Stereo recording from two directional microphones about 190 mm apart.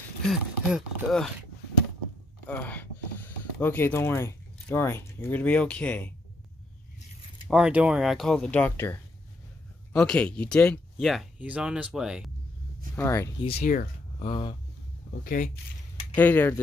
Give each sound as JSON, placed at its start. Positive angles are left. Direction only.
{"t": 0.3, "sound": "speech", "side_deg": 0}
{"t": 2.4, "sound": "speech", "side_deg": 10}
{"t": 7.4, "sound": "speech", "side_deg": -5}
{"t": 12.9, "sound": "speech", "side_deg": 15}
{"t": 13.6, "sound": "speech", "side_deg": 45}
{"t": 14.2, "sound": "speech", "side_deg": 25}
{"t": 15.2, "sound": "speech", "side_deg": 45}
{"t": 16.2, "sound": "speech", "side_deg": 10}